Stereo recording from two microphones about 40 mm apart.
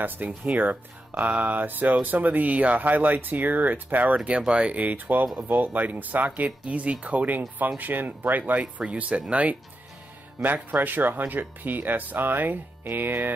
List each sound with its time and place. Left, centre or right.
0.0 s speech: right
1.1 s speech: right
4.4 s speech: right
4.8 s speech: right
6.6 s speech: right
10.4 s speech: right